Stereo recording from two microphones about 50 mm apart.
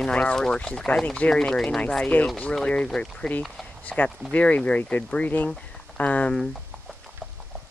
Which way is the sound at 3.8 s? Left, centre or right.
Left.